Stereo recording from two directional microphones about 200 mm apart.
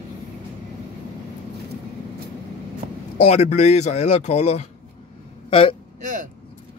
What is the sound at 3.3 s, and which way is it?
Speech, 35° left (ahead or behind).